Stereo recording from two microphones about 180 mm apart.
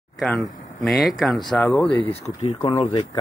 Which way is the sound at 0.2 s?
5° left (ahead or behind).